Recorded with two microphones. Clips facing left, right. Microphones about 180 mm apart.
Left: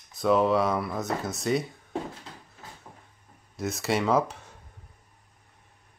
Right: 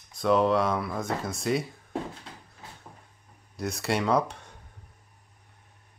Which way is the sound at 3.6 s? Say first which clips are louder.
Left 1 dB; centre (ahead or behind).